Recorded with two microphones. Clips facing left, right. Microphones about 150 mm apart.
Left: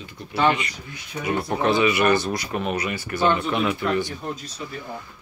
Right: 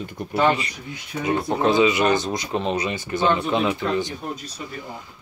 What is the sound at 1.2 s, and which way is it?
Speech, 20° right (ahead or behind).